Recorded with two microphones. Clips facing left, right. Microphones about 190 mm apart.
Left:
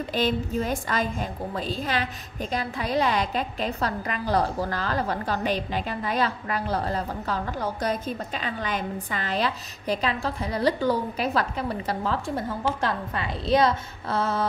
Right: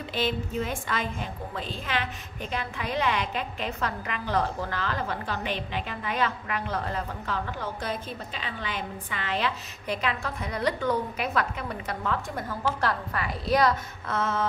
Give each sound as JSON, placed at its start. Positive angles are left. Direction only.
{"t": 0.1, "sound": "a woman's voice", "side_deg": 40}